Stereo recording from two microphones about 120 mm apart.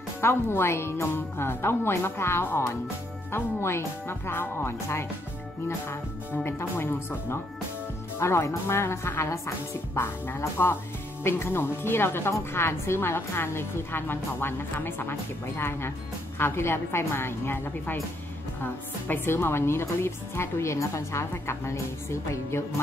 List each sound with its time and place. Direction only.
0.2 s speech: 20° left (ahead or behind)